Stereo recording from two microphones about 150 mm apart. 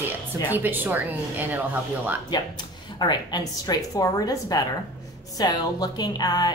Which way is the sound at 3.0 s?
30° left (ahead or behind).